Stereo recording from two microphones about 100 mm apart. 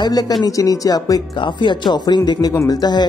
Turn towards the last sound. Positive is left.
turn(degrees=45)  # may be behind; listen again after turning